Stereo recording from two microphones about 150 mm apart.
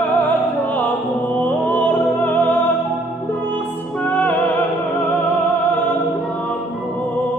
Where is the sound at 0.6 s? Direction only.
10° left (ahead or behind).